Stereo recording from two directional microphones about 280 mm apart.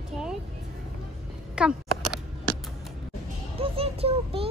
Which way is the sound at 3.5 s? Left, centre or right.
Right.